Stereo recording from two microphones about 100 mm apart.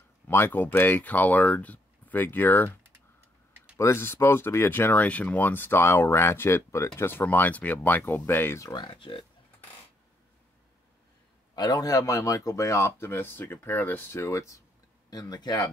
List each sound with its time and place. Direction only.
0.3 s speech: 20° left (ahead or behind)
3.7 s speech: 25° left (ahead or behind)
8.6 s speech: 50° left (ahead or behind)
11.5 s speech: 40° left (ahead or behind)
15.0 s speech: 45° left (ahead or behind)